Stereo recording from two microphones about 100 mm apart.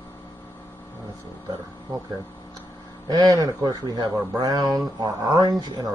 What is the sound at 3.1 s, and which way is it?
Speech, 40° right (ahead or behind).